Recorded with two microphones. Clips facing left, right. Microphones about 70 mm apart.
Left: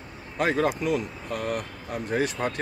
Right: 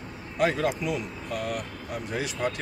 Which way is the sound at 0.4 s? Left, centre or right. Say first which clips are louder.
Left 1 dB; left.